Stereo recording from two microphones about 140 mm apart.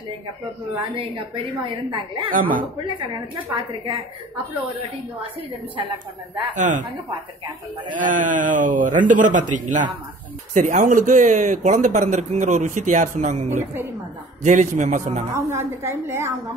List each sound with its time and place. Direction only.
0.7 s a woman's voice: 40° right (ahead or behind)
2.3 s a man's voice: 80° right
3.0 s a woman's voice: 35° right (ahead or behind)
6.5 s speech: 60° right (ahead or behind)
8.0 s speech: 65° right (ahead or behind)
15.3 s a woman's voice: 20° right (ahead or behind)